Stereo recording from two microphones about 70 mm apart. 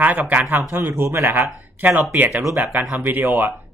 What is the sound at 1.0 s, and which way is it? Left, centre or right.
Speech, right.